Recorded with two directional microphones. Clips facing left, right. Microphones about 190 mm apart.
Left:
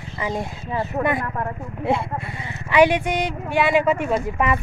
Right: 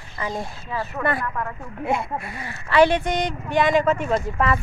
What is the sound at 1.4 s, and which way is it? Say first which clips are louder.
Speech: left 2 dB; 30° left (ahead or behind).